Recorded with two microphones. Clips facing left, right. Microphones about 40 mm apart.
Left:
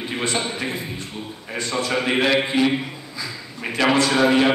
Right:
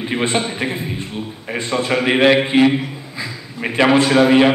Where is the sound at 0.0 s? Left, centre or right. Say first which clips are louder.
Right 5 dB; right.